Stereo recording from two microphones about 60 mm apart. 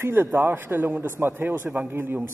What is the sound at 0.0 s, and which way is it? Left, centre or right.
A man's voice, right.